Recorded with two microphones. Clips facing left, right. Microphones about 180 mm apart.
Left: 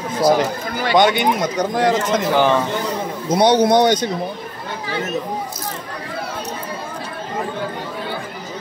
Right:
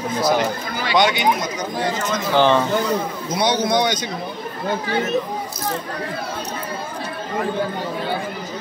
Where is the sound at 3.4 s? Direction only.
60° left (ahead or behind).